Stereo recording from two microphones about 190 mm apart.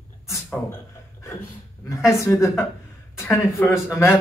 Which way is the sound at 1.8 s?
15° left (ahead or behind).